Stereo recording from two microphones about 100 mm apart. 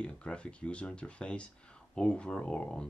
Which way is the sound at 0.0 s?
10° left (ahead or behind).